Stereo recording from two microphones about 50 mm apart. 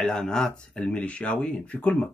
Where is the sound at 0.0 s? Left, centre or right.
Centre.